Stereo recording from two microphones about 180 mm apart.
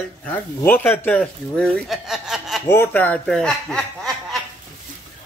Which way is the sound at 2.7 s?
10° left (ahead or behind).